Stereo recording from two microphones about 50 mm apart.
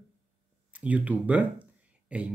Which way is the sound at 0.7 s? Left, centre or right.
Right.